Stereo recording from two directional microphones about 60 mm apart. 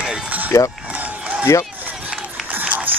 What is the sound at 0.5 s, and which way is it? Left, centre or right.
Speech, left.